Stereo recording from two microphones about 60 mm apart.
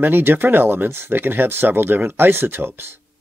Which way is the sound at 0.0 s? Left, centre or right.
Right.